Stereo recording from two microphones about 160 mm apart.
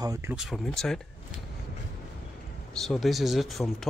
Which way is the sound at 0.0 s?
20° right (ahead or behind).